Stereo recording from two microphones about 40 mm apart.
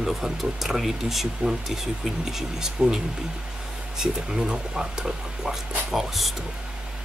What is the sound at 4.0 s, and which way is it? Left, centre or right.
Speech, centre.